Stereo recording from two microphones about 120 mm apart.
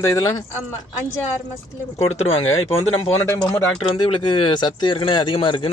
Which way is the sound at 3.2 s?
20° left (ahead or behind).